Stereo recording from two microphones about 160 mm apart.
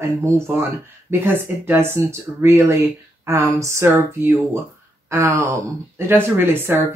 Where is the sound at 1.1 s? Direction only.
15° right (ahead or behind).